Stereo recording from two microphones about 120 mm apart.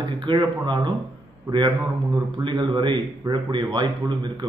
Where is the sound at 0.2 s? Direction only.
40° right (ahead or behind).